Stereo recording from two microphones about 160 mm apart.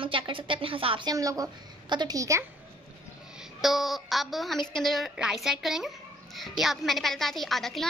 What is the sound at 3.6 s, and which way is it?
A woman's voice, centre (ahead or behind).